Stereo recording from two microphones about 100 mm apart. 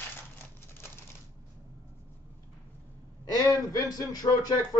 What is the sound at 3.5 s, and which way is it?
Speech, 35° left (ahead or behind).